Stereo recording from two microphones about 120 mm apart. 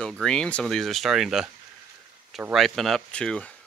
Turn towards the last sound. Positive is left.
turn(degrees=10)  # may be behind; listen again after turning